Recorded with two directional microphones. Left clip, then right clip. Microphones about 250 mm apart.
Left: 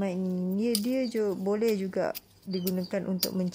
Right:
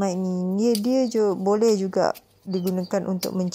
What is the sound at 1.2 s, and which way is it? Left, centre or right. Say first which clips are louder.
Speech: right 8 dB; centre.